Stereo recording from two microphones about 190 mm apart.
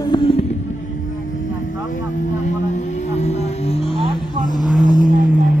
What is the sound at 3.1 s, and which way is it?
Music, 35° left (ahead or behind).